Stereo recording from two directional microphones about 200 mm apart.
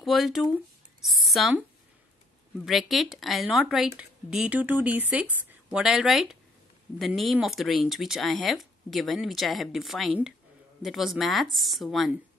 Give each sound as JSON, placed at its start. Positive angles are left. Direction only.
{"t": 0.0, "sound": "a woman's voice", "side_deg": 0}
{"t": 2.6, "sound": "a woman's voice", "side_deg": 0}